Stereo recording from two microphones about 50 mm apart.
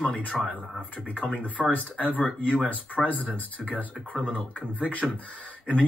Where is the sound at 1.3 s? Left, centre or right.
Left.